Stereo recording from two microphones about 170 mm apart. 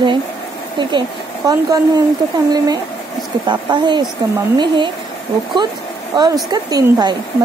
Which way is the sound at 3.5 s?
25° right (ahead or behind).